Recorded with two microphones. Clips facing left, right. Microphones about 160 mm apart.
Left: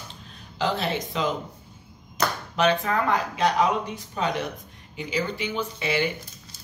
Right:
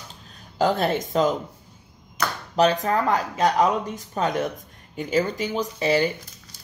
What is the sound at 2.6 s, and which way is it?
Speech, 40° right (ahead or behind).